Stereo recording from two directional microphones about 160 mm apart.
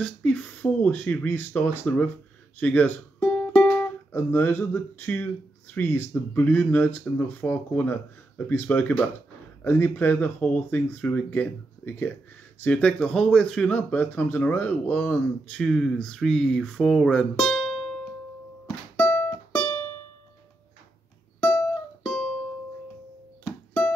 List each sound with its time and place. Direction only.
0.0 s speech: 10° left (ahead or behind)
18.9 s music: 15° left (ahead or behind)
21.4 s music: 15° left (ahead or behind)
22.0 s music: 5° left (ahead or behind)